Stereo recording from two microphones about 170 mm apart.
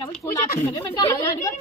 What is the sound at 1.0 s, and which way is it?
Speech, 20° left (ahead or behind).